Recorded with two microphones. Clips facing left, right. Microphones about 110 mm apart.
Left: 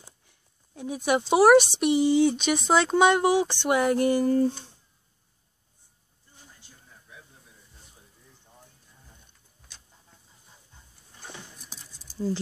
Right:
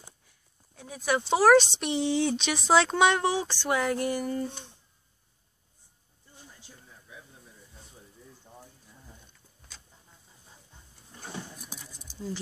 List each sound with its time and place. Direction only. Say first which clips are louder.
0.7 s speech: left 4 dB; 20° left (ahead or behind); by 3.3 s 5° left (ahead or behind)
3.3 s speech: left 5 dB; 15° left (ahead or behind); by 4.6 s 35° left (ahead or behind)